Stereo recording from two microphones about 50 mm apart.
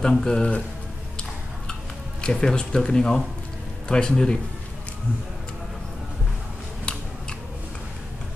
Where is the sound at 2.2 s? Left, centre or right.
Centre.